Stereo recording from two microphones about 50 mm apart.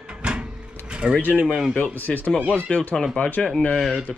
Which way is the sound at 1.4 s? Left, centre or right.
Centre.